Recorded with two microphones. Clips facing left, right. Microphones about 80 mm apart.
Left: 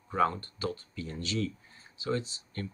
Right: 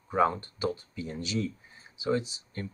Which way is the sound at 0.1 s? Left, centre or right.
Centre.